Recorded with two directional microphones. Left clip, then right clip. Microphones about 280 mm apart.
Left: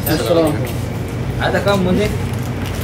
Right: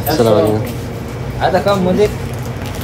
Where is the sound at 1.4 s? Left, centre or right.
Right.